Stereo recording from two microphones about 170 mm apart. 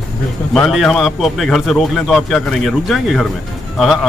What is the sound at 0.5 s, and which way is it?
Speech, centre (ahead or behind).